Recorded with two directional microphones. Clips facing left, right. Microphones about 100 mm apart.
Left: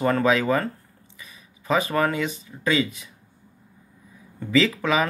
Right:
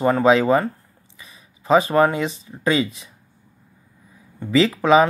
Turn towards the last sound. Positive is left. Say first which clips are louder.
# right 7 dB
turn(degrees=-30)  # may be behind; listen again after turning